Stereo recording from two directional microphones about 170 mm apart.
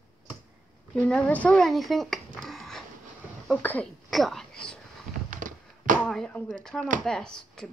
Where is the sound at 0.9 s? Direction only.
5° left (ahead or behind).